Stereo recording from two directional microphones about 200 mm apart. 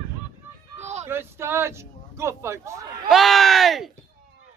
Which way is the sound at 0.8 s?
35° right (ahead or behind).